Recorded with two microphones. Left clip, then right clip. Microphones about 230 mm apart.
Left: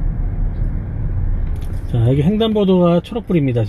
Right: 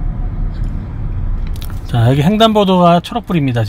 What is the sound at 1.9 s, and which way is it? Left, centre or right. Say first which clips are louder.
Speech: right 5 dB; right.